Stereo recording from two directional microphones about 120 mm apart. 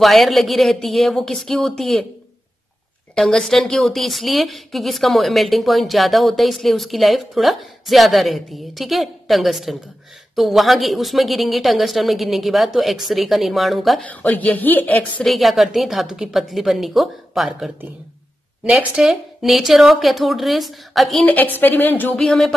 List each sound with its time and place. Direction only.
0.0 s a woman's voice: centre (ahead or behind)
3.2 s a woman's voice: 5° left (ahead or behind)
14.0 s a woman's voice: 10° left (ahead or behind)
15.3 s a woman's voice: centre (ahead or behind)
21.3 s a woman's voice: 15° left (ahead or behind)
22.1 s a woman's voice: 5° left (ahead or behind)